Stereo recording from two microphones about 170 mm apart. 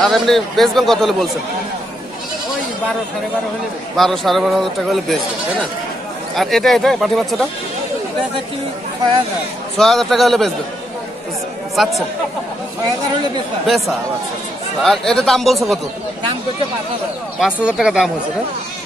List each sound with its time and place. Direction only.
0.0 s speech: centre (ahead or behind)
3.9 s speech: centre (ahead or behind)
6.3 s speech: centre (ahead or behind)
9.8 s speech: centre (ahead or behind)
11.7 s speech: centre (ahead or behind)
14.8 s speech: centre (ahead or behind)
17.4 s speech: 5° right (ahead or behind)